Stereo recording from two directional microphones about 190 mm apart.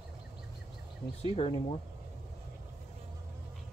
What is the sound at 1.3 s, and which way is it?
Speech, 30° left (ahead or behind).